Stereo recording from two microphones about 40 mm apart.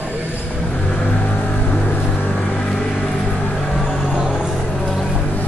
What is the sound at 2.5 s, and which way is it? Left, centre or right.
Vehicle, left.